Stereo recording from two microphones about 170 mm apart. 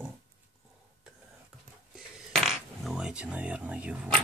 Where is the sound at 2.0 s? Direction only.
Centre (ahead or behind).